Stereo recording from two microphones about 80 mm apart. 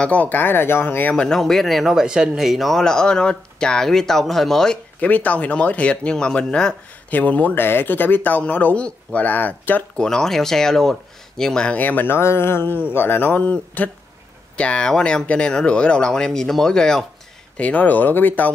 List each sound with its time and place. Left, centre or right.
0.0 s speech: centre
1.1 s speech: centre
5.0 s speech: centre
9.9 s speech: centre
17.6 s speech: centre